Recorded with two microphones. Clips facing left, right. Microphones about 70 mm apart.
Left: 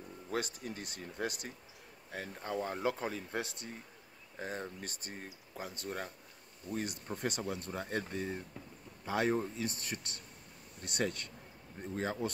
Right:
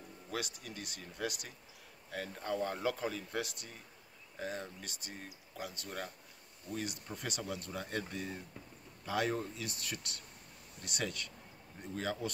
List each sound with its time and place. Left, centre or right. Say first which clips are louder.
0.3 s speech: left 4 dB; left
2.0 s speech: right 2 dB; centre
6.7 s speech: left 2 dB; left